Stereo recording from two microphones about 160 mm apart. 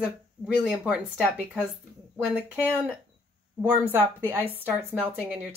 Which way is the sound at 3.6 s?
15° right (ahead or behind).